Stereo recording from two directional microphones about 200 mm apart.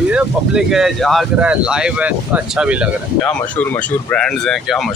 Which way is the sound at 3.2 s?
5° left (ahead or behind).